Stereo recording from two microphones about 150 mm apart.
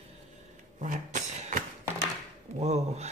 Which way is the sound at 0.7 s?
60° right (ahead or behind).